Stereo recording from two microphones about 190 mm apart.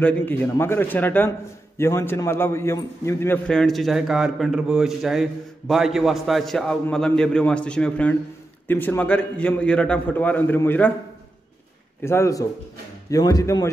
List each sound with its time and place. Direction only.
0.0 s a man's voice: 10° left (ahead or behind)
12.0 s a man's voice: 15° left (ahead or behind)